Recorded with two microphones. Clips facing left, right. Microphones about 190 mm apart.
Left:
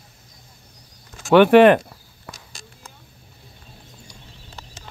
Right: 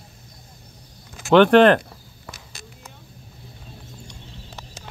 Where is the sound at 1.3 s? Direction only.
10° left (ahead or behind).